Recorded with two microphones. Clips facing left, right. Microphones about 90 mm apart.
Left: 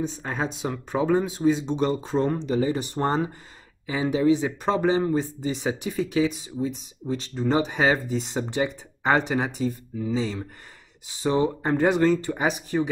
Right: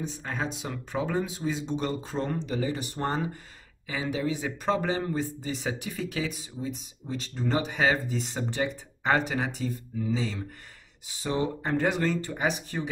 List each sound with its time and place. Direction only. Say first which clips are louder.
0.0 s speech: left 5 dB; 30° left (ahead or behind)
11.2 s speech: left 6 dB; 30° left (ahead or behind)